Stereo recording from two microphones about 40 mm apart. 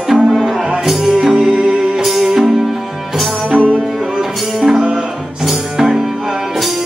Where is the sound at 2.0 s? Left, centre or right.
Centre.